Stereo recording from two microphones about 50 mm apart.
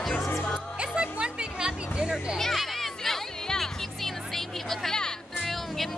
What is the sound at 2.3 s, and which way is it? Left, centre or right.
Music, centre.